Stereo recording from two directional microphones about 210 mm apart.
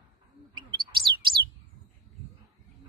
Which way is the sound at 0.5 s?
20° right (ahead or behind).